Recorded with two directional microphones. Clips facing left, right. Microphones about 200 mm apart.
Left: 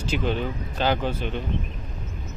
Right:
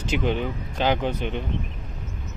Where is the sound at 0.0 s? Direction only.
15° right (ahead or behind).